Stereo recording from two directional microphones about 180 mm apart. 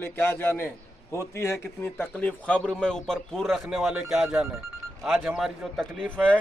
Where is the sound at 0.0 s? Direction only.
10° left (ahead or behind).